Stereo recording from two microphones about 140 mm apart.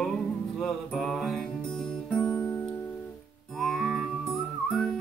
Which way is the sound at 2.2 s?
20° left (ahead or behind).